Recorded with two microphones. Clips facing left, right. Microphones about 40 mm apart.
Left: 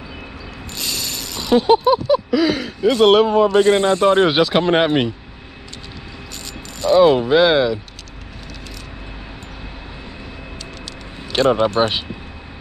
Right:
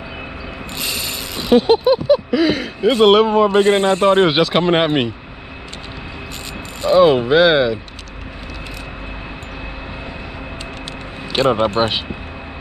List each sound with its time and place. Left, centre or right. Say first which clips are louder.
0.7 s a sound: right 1 dB; right
3.1 s speech: right 1 dB; centre
3.4 s speech: even; right
4.3 s speech: right 1 dB; centre
6.8 s speech: right 1 dB; centre
11.3 s speech: even; right